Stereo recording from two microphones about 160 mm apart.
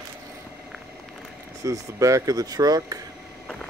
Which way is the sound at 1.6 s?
20° right (ahead or behind).